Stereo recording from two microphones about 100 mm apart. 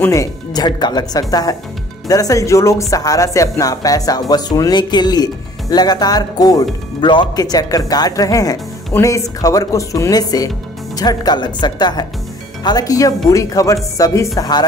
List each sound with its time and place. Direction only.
0.1 s speech: 35° left (ahead or behind)
7.0 s speech: 50° left (ahead or behind)